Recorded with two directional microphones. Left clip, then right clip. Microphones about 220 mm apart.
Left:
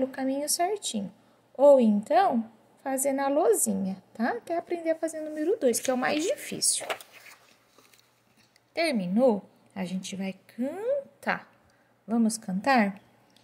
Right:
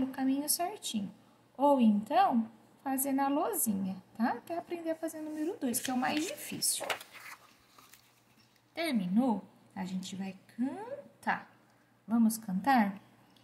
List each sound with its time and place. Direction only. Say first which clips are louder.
0.1 s a woman's voice: left 4 dB; 25° left (ahead or behind)
8.7 s a woman's voice: left 6 dB; 30° left (ahead or behind)
10.0 s a woman's voice: left 7 dB; 40° left (ahead or behind)
12.1 s a woman's voice: left 3 dB; 30° left (ahead or behind)